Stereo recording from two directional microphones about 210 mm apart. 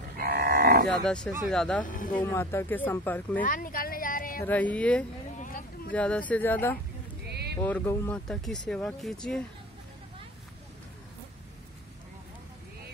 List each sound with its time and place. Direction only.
0.2 s livestock: 50° right (ahead or behind)
0.8 s speech: 5° left (ahead or behind)
1.9 s speech: 40° left (ahead or behind)
2.1 s speech: 10° left (ahead or behind)
3.4 s a sound: 40° left (ahead or behind)
4.5 s speech: 5° left (ahead or behind)
5.4 s a sound: 35° left (ahead or behind)
5.9 s speech: 5° left (ahead or behind)
7.2 s a sound: 50° right (ahead or behind)
7.6 s speech: 10° left (ahead or behind)